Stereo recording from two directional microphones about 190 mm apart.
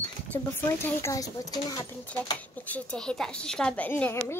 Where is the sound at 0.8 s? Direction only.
15° left (ahead or behind).